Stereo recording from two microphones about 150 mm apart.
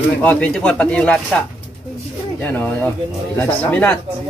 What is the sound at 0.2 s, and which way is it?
Speech, 10° left (ahead or behind).